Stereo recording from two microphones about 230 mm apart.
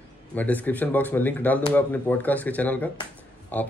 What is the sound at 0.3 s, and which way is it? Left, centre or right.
A man's voice, centre.